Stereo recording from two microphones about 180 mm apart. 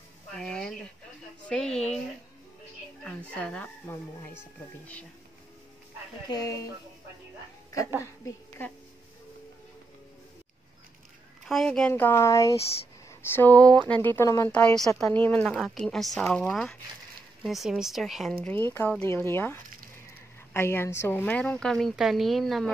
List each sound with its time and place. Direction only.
0.4 s a sound: 5° left (ahead or behind)
1.5 s a woman's voice: 5° left (ahead or behind)
3.0 s speech: 5° left (ahead or behind)
6.3 s speech: 20° left (ahead or behind)
8.3 s speech: 10° left (ahead or behind)
11.4 s a woman's voice: 5° left (ahead or behind)
18.4 s a woman's voice: 10° left (ahead or behind)